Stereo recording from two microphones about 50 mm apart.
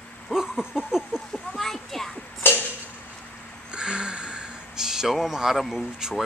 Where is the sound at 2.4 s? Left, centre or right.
Left.